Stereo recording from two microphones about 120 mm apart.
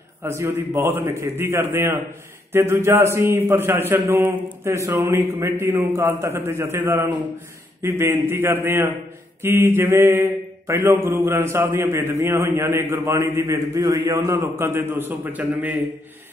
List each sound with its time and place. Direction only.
0.2 s mantra: 20° right (ahead or behind)